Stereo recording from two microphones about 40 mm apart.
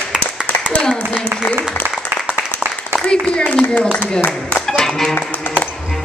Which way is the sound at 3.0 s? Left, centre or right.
Left.